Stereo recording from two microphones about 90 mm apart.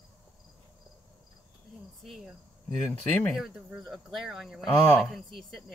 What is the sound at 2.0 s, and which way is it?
Speech, centre (ahead or behind).